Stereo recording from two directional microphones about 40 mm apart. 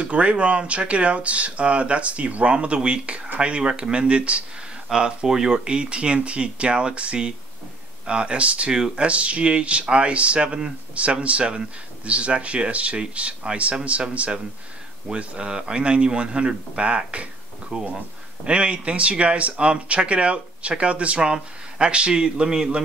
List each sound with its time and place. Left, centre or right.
0.0 s speech: right
4.9 s speech: centre
8.7 s speech: centre
9.0 s speech: right